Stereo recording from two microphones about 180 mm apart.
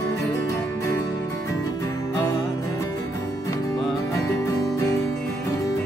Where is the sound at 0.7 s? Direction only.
15° left (ahead or behind).